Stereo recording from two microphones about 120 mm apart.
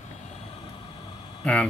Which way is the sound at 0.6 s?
45° left (ahead or behind).